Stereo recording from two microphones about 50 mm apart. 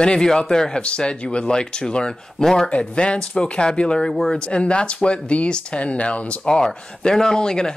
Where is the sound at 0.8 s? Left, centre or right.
Left.